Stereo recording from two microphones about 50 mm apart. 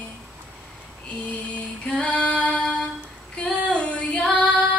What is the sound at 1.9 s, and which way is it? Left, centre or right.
Female singing, left.